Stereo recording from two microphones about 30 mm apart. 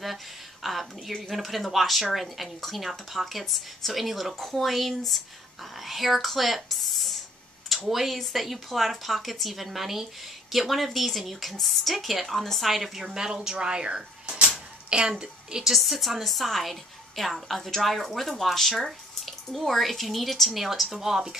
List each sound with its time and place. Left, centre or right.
0.7 s speech: centre
13.0 s speech: right
13.6 s speech: right
15.6 s speech: centre
17.6 s speech: centre
17.8 s speech: centre
18.9 s drip: centre
19.6 s speech: centre
21.0 s speech: centre